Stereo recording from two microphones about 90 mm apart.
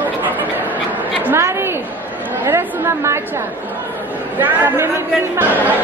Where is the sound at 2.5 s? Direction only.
30° right (ahead or behind).